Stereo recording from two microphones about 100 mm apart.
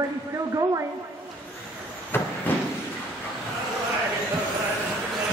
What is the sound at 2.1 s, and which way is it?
Vehicle, 20° left (ahead or behind).